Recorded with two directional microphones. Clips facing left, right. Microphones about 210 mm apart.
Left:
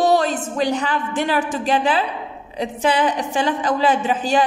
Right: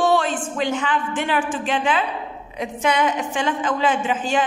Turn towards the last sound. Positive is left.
turn(degrees=35)  # may be behind; listen again after turning